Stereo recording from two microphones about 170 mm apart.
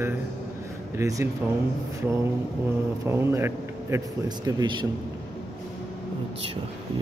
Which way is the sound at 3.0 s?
15° right (ahead or behind).